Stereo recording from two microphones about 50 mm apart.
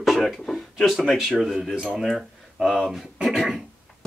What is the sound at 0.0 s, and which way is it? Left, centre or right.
Speech, centre.